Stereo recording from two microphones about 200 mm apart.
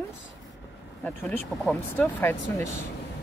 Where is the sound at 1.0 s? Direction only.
5° left (ahead or behind).